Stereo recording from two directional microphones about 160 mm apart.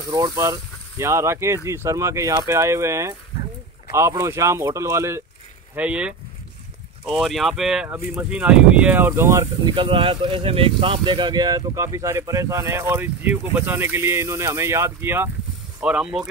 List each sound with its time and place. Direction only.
0.1 s speech: 20° right (ahead or behind); by 16.3 s 5° right (ahead or behind)